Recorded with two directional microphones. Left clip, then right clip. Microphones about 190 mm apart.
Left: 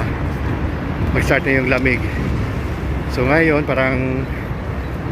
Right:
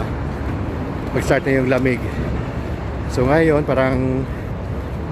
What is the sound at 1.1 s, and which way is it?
Speech, 20° right (ahead or behind).